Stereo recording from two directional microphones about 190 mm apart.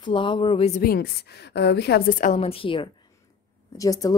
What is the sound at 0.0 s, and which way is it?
Speech, 25° left (ahead or behind).